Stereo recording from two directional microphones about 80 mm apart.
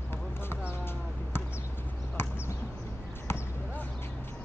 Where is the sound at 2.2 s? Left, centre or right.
Left.